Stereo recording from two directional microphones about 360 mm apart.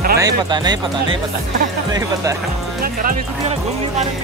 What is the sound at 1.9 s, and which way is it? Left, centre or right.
Speech, centre.